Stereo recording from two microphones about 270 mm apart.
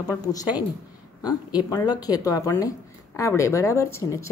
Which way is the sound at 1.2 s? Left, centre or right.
Centre.